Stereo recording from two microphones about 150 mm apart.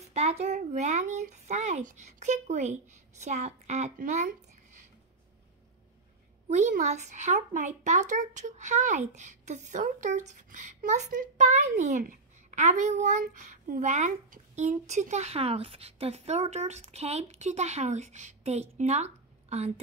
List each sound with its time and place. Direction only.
0.0 s speech: 45° right (ahead or behind)
6.5 s speech: 50° right (ahead or behind)
13.2 s speech: 65° right (ahead or behind); by 19.7 s 45° right (ahead or behind)